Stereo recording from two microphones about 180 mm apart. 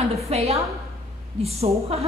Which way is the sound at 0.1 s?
35° right (ahead or behind).